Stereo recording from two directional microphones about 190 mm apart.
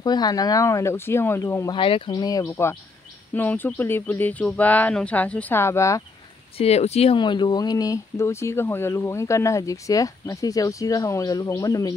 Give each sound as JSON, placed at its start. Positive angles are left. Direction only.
{"t": 0.0, "sound": "speech", "side_deg": 20}
{"t": 1.8, "sound": "speech", "side_deg": 30}
{"t": 6.6, "sound": "speech", "side_deg": 35}